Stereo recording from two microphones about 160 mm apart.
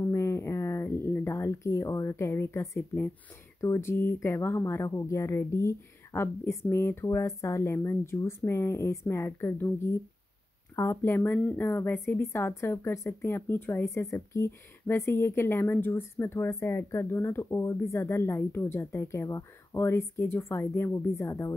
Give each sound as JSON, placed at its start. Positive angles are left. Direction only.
{"t": 0.0, "sound": "a sound", "side_deg": 20}
{"t": 3.6, "sound": "speech", "side_deg": 15}
{"t": 10.8, "sound": "speech", "side_deg": 15}